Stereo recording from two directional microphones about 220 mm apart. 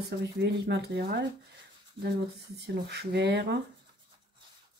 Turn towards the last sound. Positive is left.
turn(degrees=-50)  # may be behind; listen again after turning